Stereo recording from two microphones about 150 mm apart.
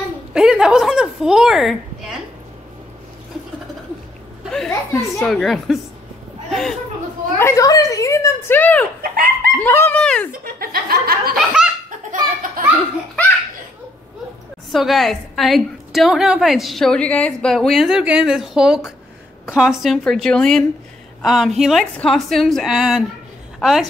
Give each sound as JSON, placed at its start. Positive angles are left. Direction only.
{"t": 0.3, "sound": "a woman's voice", "side_deg": -5}
{"t": 4.6, "sound": "a child's voice", "side_deg": 10}
{"t": 5.3, "sound": "a woman's voice", "side_deg": 0}
{"t": 7.3, "sound": "a child's voice", "side_deg": 20}
{"t": 9.1, "sound": "chicken", "side_deg": -80}
{"t": 9.6, "sound": "speech", "side_deg": 15}
{"t": 10.4, "sound": "speech", "side_deg": -80}
{"t": 11.3, "sound": "a woman's voice", "side_deg": -5}
{"t": 12.1, "sound": "laughter", "side_deg": -65}
{"t": 14.7, "sound": "a woman's voice", "side_deg": 0}